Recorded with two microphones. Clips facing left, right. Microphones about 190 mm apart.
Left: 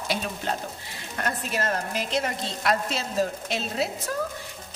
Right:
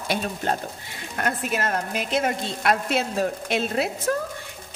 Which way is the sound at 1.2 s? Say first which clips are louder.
Right 2 dB; 55° right (ahead or behind).